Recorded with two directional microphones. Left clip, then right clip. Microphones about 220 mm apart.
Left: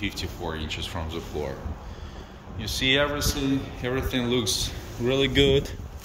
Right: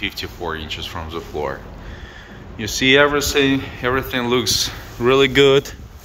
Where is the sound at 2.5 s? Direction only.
15° right (ahead or behind).